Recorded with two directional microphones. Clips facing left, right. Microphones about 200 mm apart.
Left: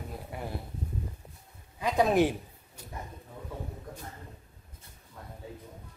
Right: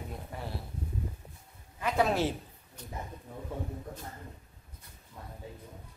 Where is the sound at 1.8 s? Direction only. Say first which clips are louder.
Left 4 dB; 15° left (ahead or behind).